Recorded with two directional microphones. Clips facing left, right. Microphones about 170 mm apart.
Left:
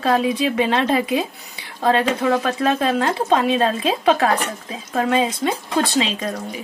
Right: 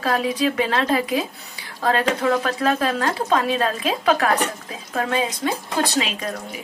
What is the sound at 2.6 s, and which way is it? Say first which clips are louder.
Speech: left 2 dB; 25° left (ahead or behind).